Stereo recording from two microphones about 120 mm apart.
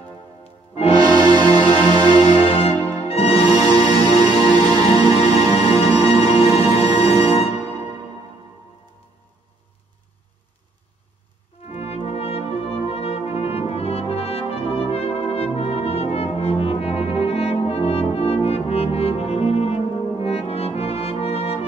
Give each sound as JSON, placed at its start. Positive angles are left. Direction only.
{"t": 0.4, "sound": "music", "side_deg": 55}
{"t": 0.9, "sound": "music", "side_deg": -35}
{"t": 2.1, "sound": "music", "side_deg": 55}
{"t": 3.4, "sound": "music", "side_deg": -35}
{"t": 6.4, "sound": "music", "side_deg": 55}
{"t": 11.6, "sound": "brass instrument", "side_deg": 60}